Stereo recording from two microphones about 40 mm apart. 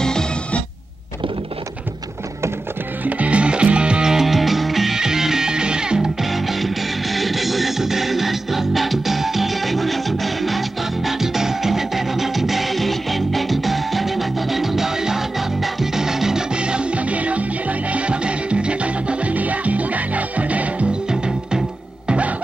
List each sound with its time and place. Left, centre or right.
0.0 s music: centre
3.0 s music: right
4.1 s music: centre
4.9 s music: centre
6.3 s music: centre
16.5 s music: right
21.1 s music: centre